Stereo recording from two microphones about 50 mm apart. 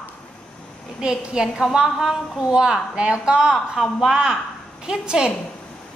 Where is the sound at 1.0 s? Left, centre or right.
Centre.